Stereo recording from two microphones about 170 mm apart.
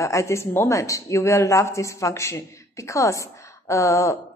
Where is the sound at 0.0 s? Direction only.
15° left (ahead or behind).